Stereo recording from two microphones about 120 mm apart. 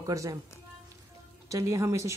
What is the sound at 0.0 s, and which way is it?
Speech, 30° right (ahead or behind).